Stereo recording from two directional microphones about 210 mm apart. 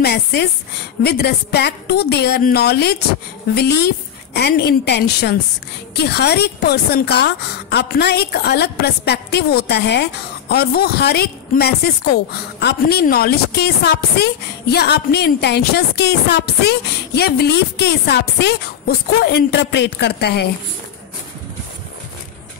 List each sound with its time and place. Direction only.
0.0 s a woman's voice: 50° left (ahead or behind)